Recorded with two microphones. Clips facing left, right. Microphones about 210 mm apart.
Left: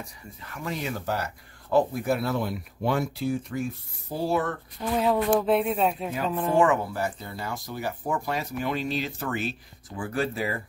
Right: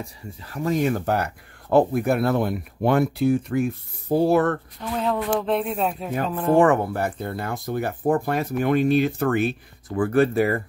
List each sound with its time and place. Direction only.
0.4 s speech: 35° right (ahead or behind); by 4.6 s 60° right (ahead or behind)
4.9 s speech: 5° left (ahead or behind)
6.5 s speech: 55° right (ahead or behind)